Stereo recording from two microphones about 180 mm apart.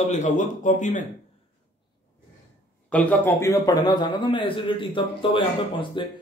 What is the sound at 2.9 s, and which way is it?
A man's voice, 10° left (ahead or behind).